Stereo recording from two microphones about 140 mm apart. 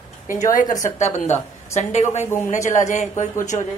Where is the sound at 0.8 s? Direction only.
60° left (ahead or behind).